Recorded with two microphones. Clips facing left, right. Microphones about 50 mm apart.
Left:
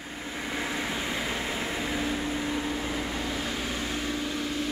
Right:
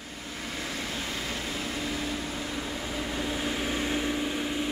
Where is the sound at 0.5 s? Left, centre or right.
Left.